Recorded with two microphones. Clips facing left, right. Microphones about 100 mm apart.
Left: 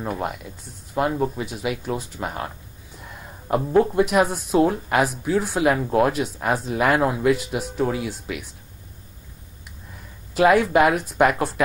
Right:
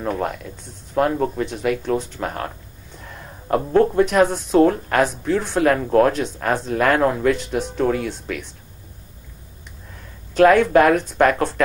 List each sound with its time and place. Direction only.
0.0 s speech: 5° left (ahead or behind)
10.3 s speech: 5° left (ahead or behind)